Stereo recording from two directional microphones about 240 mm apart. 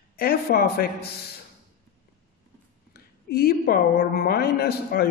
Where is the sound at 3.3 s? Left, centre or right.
Left.